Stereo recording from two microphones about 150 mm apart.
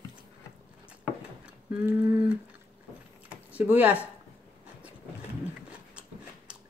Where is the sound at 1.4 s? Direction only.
10° right (ahead or behind).